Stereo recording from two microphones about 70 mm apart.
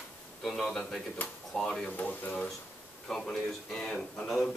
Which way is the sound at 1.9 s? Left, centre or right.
Left.